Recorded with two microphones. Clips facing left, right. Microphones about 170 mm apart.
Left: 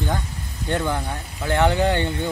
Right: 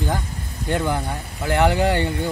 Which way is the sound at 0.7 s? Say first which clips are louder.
Right 1 dB; 10° right (ahead or behind).